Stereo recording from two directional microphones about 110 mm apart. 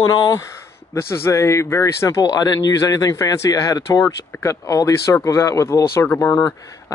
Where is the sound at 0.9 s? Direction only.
25° left (ahead or behind).